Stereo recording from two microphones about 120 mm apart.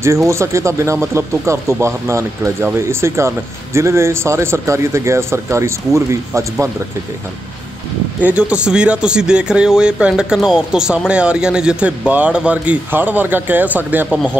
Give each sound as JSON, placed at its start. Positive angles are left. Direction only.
{"t": 0.0, "sound": "speech", "side_deg": -25}
{"t": 8.2, "sound": "speech", "side_deg": -10}